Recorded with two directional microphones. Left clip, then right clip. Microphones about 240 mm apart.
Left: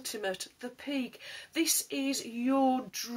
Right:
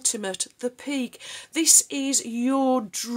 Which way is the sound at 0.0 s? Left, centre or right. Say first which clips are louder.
Right 7 dB; right.